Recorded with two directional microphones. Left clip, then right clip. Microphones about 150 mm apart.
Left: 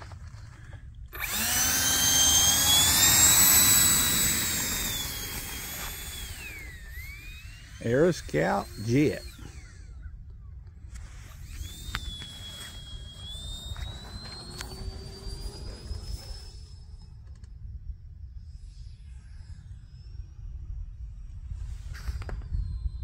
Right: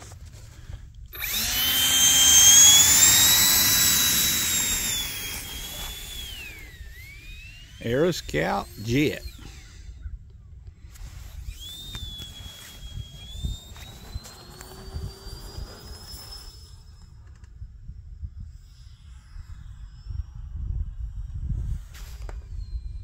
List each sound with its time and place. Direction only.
1.1 s drill: 45° left (ahead or behind)
1.6 s helicopter: 10° left (ahead or behind)
2.3 s jet engine: 10° right (ahead or behind)
5.9 s a sound: centre (ahead or behind)
11.6 s a sound: 10° left (ahead or behind)
14.3 s jet engine: centre (ahead or behind)